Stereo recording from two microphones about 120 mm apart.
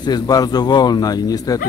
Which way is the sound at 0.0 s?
35° left (ahead or behind).